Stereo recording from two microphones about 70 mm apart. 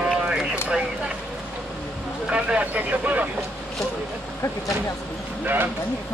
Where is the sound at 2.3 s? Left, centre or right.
Centre.